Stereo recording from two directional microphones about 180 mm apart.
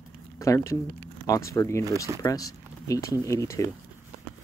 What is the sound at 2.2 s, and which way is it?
Speech, 20° left (ahead or behind).